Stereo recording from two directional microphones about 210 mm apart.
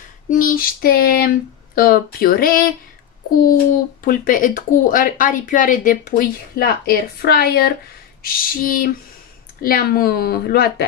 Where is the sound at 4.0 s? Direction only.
40° left (ahead or behind).